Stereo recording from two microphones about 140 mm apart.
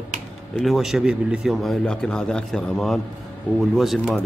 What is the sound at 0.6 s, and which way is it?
Speech, centre (ahead or behind).